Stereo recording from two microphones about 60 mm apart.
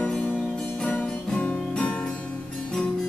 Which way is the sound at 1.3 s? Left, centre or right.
Centre.